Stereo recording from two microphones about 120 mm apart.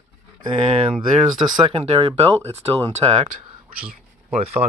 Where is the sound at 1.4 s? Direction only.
45° right (ahead or behind).